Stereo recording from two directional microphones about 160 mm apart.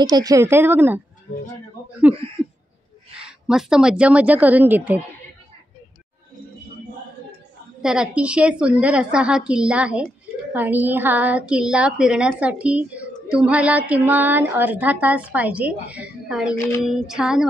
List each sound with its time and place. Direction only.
0.0 s a woman's voice: 25° right (ahead or behind)
2.1 s a woman's voice: 10° right (ahead or behind)
7.8 s a woman's voice: 5° right (ahead or behind)
16.8 s child singing: centre (ahead or behind)